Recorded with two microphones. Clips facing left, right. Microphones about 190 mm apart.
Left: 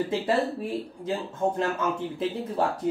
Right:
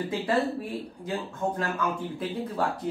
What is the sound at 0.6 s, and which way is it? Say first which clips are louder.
Speech: left 3 dB; 25° left (ahead or behind).